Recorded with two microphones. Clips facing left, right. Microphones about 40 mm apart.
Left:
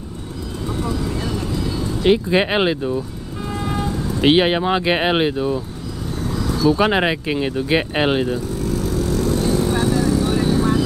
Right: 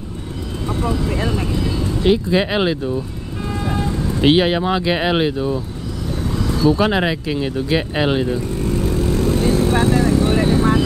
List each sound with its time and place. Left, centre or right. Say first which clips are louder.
0.7 s vehicle: right 3 dB; right
2.0 s speech: left 1 dB; left
3.6 s vehicle: right 1 dB; centre
4.4 s speech: even; centre
5.1 s speech: even; centre
6.2 s vehicle: right 1 dB; centre
6.8 s speech: even; centre
8.4 s vehicle: right 2 dB; right